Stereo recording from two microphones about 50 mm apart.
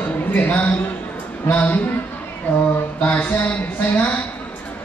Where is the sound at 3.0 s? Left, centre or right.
Left.